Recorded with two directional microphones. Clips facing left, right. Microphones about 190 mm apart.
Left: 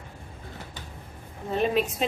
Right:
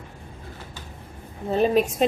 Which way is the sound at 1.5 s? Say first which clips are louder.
Right 5 dB; 35° right (ahead or behind).